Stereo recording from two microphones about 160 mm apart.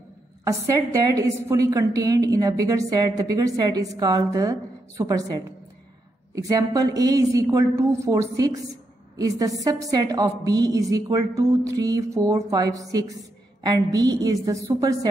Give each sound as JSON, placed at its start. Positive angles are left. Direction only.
{"t": 0.5, "sound": "a woman's voice", "side_deg": -20}